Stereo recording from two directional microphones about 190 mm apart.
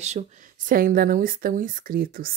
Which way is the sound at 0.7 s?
45° right (ahead or behind).